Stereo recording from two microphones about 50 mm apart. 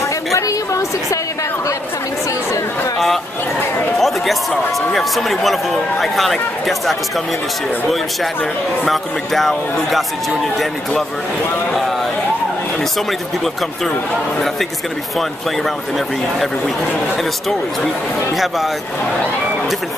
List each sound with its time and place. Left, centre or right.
0.3 s a sound: left
4.0 s speech: centre
8.8 s speech: centre
18.3 s speech: centre